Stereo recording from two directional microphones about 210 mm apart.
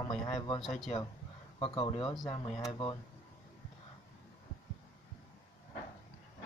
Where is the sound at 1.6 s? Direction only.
25° left (ahead or behind).